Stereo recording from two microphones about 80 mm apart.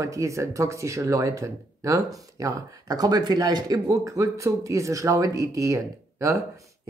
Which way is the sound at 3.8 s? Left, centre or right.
Right.